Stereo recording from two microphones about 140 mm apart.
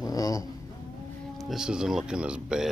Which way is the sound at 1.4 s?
Centre (ahead or behind).